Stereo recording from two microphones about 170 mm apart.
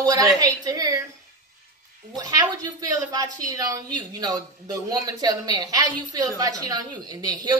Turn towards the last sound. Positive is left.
turn(degrees=-25)  # may be behind; listen again after turning